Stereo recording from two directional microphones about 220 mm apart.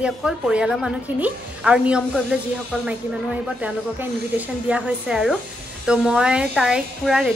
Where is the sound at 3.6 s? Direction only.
5° right (ahead or behind).